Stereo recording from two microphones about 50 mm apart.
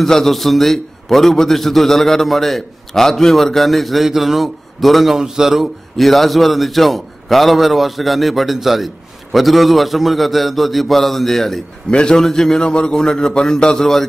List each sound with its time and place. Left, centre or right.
0.0 s a man's voice: centre
11.9 s a man's voice: centre